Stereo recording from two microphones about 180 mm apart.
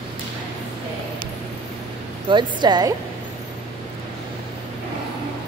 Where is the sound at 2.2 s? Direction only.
25° right (ahead or behind).